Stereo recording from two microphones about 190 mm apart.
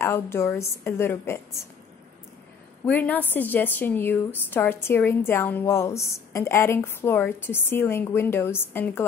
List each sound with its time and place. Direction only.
0.0 s a woman's voice: 10° left (ahead or behind)
2.8 s a woman's voice: 10° left (ahead or behind)